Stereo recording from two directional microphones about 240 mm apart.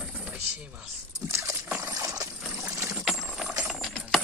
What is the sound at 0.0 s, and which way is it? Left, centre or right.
Pour, centre.